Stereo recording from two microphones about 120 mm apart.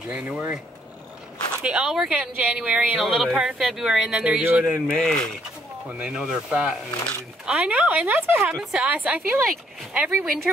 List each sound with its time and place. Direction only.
0.1 s speech: 15° right (ahead or behind)
1.6 s speech: 10° right (ahead or behind)
4.9 s speech: 5° left (ahead or behind)
5.9 s speech: 10° right (ahead or behind)